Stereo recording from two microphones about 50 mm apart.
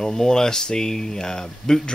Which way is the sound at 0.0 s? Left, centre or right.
Centre.